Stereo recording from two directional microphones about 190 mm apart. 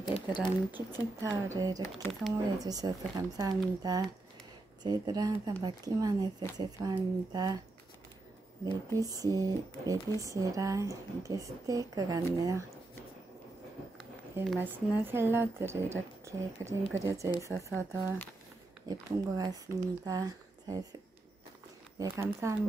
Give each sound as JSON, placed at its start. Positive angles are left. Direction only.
{"t": 0.1, "sound": "speech", "side_deg": 25}
{"t": 0.7, "sound": "speech", "side_deg": -15}
{"t": 8.6, "sound": "speech", "side_deg": -20}
{"t": 14.3, "sound": "speech", "side_deg": -10}
{"t": 21.9, "sound": "speech", "side_deg": -15}